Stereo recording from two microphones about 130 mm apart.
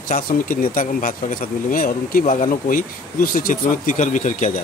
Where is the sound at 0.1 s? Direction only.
90° left; by 4.5 s 75° left (ahead or behind).